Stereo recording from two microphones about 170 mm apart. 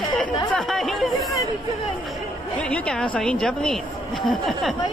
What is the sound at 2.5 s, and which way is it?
A woman's voice, 5° left (ahead or behind).